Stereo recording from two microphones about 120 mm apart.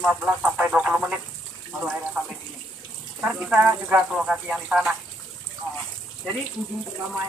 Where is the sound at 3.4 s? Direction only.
5° right (ahead or behind).